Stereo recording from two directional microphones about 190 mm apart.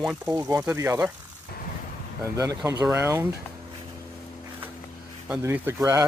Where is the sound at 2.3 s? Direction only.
15° right (ahead or behind).